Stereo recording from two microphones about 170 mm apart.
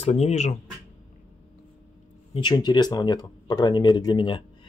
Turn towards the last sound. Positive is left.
turn(degrees=30)  # may be behind; listen again after turning